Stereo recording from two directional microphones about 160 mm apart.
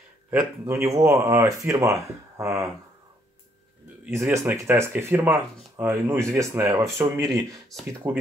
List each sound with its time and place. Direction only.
0.3 s speech: 15° right (ahead or behind)
4.0 s speech: 15° right (ahead or behind)